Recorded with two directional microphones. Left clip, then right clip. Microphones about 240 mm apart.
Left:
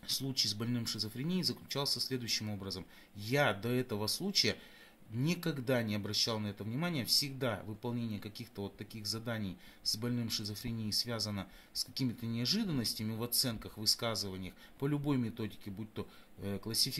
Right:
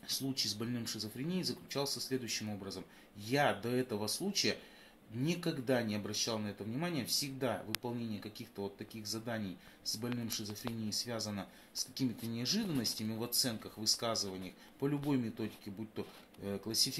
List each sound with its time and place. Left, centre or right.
0.0 s speech: left
16.4 s speech: left